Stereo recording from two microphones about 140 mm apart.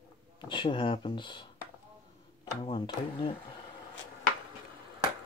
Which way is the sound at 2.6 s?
35° left (ahead or behind).